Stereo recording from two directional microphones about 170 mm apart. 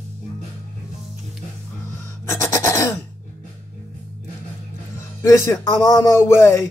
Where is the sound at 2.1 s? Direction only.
15° left (ahead or behind).